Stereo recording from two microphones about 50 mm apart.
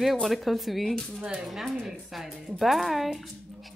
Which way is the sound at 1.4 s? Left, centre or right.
Centre.